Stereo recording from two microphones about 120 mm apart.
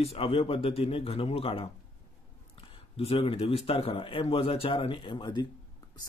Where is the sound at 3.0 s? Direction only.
55° left (ahead or behind).